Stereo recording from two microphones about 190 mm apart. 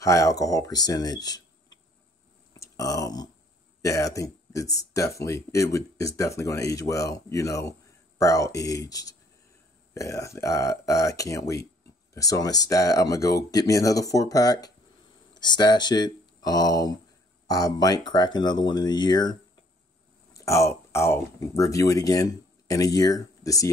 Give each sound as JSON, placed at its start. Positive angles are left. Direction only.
{"t": 0.0, "sound": "speech", "side_deg": 15}
{"t": 20.3, "sound": "speech", "side_deg": 15}